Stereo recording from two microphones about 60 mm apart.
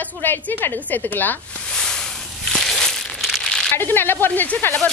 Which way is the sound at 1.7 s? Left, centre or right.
Centre.